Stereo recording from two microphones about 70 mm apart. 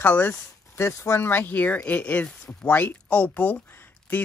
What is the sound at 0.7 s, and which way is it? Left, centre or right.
Speech, left.